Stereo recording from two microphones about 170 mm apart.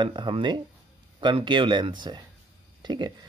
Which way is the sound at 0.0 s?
30° right (ahead or behind).